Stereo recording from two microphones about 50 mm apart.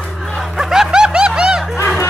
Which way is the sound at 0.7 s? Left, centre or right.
Centre.